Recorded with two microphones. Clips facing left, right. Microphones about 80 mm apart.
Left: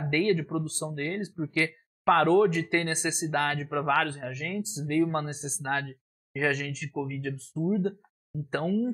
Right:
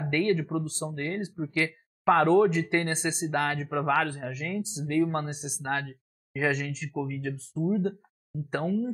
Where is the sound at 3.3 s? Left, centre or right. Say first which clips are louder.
Even; centre.